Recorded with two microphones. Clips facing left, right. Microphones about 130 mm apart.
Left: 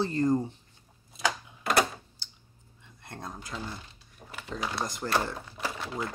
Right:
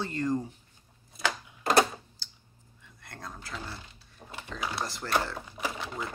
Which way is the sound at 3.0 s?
25° left (ahead or behind).